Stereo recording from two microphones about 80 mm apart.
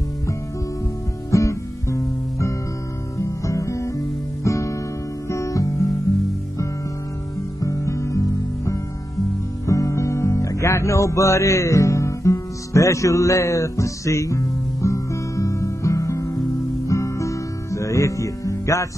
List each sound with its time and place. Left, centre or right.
1.3 s music: left
3.2 s guitar: left
5.3 s music: left
7.6 s music: left